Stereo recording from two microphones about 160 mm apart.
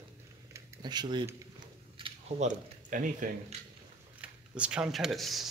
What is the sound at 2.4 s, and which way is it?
Speech, 55° right (ahead or behind).